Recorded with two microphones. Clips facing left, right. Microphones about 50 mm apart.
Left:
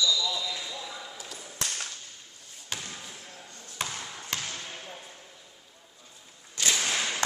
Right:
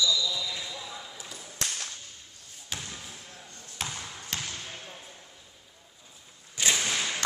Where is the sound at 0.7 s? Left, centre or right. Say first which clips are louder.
Left 1 dB; centre.